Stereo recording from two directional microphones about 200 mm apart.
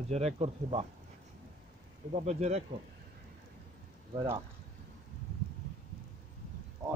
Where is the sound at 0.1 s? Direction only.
30° right (ahead or behind).